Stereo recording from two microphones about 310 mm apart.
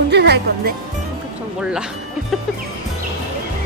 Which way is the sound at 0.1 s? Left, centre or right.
Right.